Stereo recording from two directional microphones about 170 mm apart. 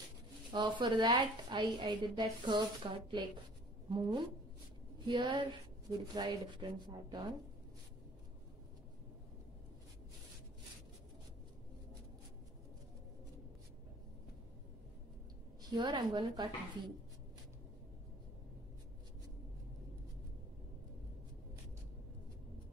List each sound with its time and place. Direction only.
0.5 s a woman's voice: 25° right (ahead or behind)
15.6 s a woman's voice: 25° right (ahead or behind)